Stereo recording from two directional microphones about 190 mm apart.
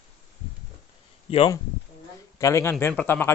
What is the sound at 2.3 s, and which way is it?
Speech, 15° left (ahead or behind).